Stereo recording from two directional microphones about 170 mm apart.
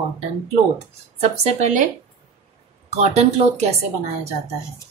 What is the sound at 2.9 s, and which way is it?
Speech, 40° right (ahead or behind).